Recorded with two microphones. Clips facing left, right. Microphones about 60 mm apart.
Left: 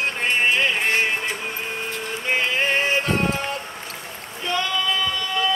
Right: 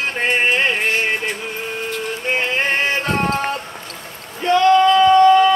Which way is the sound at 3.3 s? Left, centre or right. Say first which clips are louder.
Right 5 dB; right.